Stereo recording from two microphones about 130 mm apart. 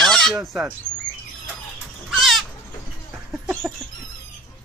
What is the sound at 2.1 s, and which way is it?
Goat, centre (ahead or behind).